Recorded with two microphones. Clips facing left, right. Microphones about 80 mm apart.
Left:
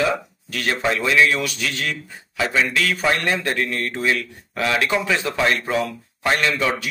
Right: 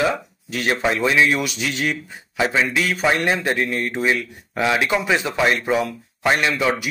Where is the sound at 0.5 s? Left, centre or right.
Centre.